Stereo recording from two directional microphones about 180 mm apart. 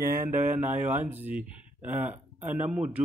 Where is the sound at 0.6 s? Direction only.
10° right (ahead or behind).